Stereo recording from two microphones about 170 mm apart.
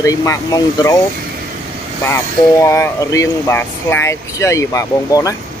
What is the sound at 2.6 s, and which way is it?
Speech, 15° left (ahead or behind).